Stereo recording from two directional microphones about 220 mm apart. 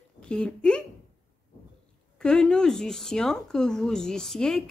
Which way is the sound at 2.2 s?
5° left (ahead or behind).